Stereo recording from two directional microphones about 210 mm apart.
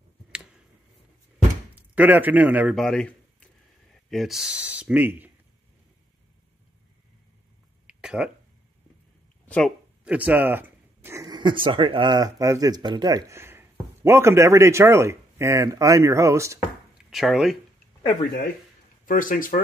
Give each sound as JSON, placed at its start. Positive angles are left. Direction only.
{"t": 1.8, "sound": "speech", "side_deg": -10}
{"t": 7.8, "sound": "a sound", "side_deg": -5}
{"t": 10.0, "sound": "speech", "side_deg": -5}
{"t": 17.1, "sound": "speech", "side_deg": 0}
{"t": 19.0, "sound": "speech", "side_deg": 40}